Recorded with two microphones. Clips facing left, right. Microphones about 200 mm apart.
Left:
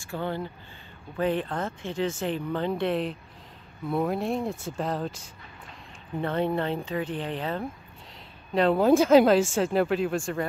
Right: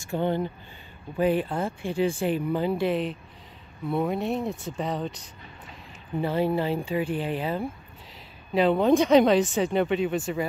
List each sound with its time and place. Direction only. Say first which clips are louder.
0.0 s speech: right 5 dB; 20° right (ahead or behind); by 10.4 s 5° right (ahead or behind)